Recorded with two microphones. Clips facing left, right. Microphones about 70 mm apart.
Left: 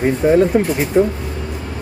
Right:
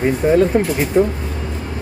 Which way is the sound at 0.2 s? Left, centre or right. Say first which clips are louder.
Left 1 dB; centre.